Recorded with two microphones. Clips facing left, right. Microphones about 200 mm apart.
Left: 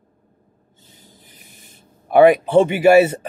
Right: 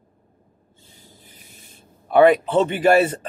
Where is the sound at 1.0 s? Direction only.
15° left (ahead or behind).